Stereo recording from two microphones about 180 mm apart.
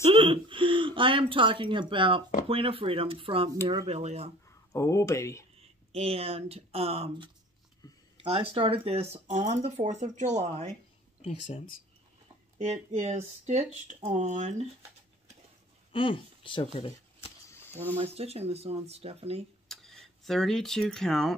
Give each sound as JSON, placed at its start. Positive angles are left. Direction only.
{"t": 0.0, "sound": "speech", "side_deg": -30}
{"t": 4.7, "sound": "speech", "side_deg": 15}
{"t": 5.6, "sound": "speech", "side_deg": -35}
{"t": 11.2, "sound": "speech", "side_deg": 35}
{"t": 12.5, "sound": "speech", "side_deg": -40}
{"t": 15.9, "sound": "speech", "side_deg": 30}
{"t": 17.9, "sound": "speech", "side_deg": -35}
{"t": 19.7, "sound": "speech", "side_deg": 0}